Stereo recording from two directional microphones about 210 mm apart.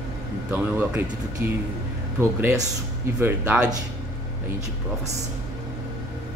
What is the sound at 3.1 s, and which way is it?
Speech, 10° right (ahead or behind).